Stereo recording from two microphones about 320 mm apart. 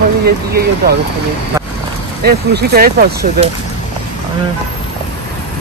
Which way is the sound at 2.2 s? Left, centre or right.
Right.